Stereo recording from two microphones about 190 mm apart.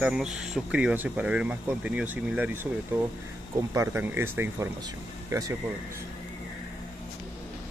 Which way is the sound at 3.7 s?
10° right (ahead or behind).